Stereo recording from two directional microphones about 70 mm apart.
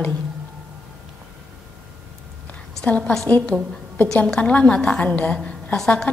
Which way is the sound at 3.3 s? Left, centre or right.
Left.